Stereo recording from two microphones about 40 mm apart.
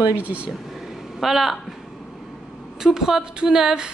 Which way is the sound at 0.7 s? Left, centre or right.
Centre.